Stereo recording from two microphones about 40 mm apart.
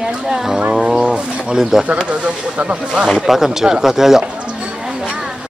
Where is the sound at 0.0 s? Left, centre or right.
Centre.